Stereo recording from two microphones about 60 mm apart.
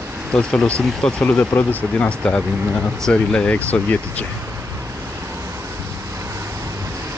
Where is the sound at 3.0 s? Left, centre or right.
Centre.